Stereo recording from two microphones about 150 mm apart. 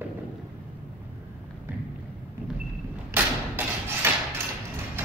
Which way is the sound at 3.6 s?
10° right (ahead or behind).